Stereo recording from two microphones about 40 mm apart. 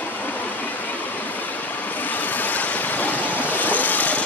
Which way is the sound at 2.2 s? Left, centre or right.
Left.